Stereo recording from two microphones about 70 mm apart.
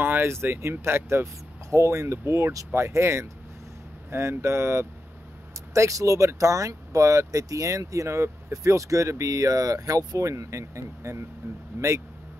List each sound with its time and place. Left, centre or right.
0.0 s speech: right
11.7 s speech: right